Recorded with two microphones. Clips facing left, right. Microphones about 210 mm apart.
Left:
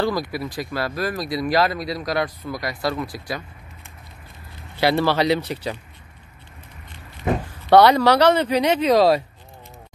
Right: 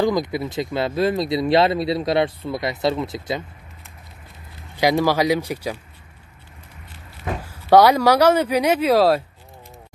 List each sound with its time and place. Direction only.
0.0 s speech: 20° right (ahead or behind)
4.7 s a man's voice: 15° right (ahead or behind)
7.4 s a man's voice: 10° right (ahead or behind)